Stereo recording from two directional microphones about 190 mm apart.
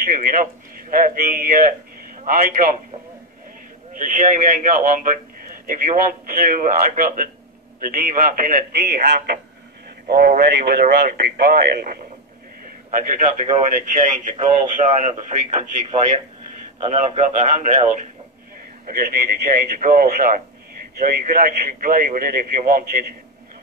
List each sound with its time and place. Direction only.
0.0 s a man's voice: 50° right (ahead or behind)
3.9 s a man's voice: 45° right (ahead or behind)
12.9 s a man's voice: 40° right (ahead or behind)
14.8 s a man's voice: 40° right (ahead or behind)
18.9 s a man's voice: 50° right (ahead or behind)